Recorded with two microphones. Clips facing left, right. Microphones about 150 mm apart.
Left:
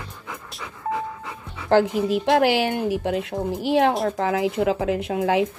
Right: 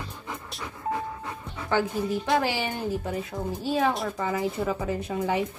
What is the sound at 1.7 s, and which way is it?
A woman's voice, 80° left.